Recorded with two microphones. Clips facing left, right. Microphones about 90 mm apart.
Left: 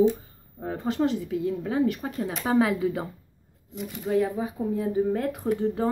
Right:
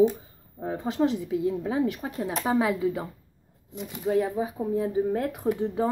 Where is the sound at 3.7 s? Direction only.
20° right (ahead or behind).